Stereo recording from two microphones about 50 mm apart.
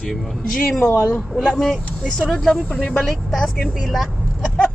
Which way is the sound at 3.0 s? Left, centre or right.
Centre.